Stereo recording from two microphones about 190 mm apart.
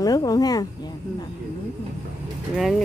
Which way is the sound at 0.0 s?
20° left (ahead or behind).